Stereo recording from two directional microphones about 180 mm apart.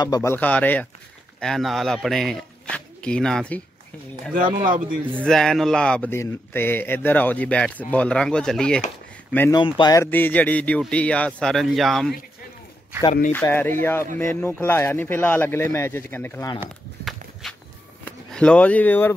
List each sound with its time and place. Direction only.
0.0 s speech: 20° left (ahead or behind)
4.3 s speech: 50° right (ahead or behind)
5.2 s speech: 5° left (ahead or behind)
9.6 s speech: 25° left (ahead or behind)
10.1 s speech: 10° left (ahead or behind)
13.3 s speech: 10° left (ahead or behind)
17.0 s walk: centre (ahead or behind)
18.3 s speech: 5° left (ahead or behind)